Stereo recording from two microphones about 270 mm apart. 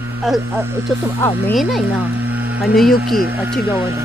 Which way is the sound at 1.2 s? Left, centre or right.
Centre.